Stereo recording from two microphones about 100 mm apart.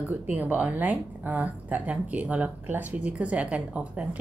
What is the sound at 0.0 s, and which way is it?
Speech, 20° right (ahead or behind).